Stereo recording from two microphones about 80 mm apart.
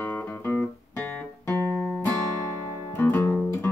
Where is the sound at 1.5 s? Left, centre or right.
Right.